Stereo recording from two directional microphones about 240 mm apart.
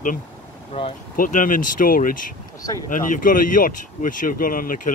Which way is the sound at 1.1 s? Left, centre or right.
Left.